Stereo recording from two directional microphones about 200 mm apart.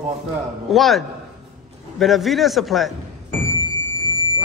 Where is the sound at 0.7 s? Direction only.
Centre (ahead or behind).